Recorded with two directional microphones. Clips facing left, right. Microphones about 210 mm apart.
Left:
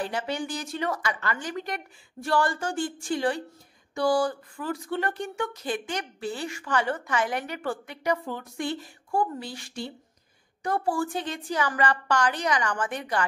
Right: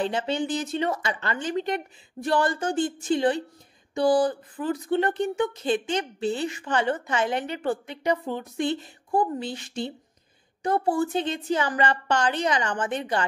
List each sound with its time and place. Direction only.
0.0 s speech: 25° right (ahead or behind)